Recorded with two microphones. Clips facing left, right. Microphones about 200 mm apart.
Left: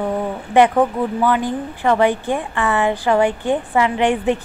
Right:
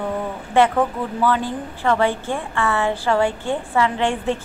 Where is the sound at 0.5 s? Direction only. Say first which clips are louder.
Left 3 dB; 15° left (ahead or behind).